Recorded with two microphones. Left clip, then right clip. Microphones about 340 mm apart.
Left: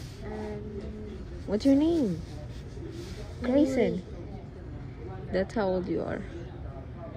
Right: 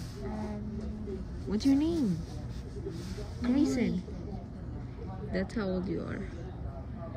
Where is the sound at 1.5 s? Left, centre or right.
Centre.